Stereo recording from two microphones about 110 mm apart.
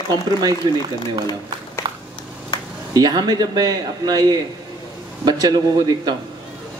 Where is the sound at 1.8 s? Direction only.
35° right (ahead or behind).